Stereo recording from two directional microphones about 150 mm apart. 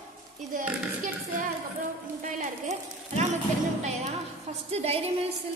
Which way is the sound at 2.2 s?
50° right (ahead or behind).